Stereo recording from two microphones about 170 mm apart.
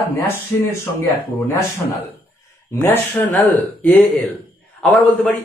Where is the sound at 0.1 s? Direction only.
10° left (ahead or behind).